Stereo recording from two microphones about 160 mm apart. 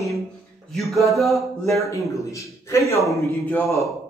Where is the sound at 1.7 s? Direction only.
20° left (ahead or behind).